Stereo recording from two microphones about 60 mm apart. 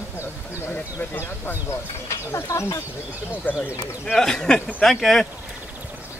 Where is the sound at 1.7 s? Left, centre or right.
Left.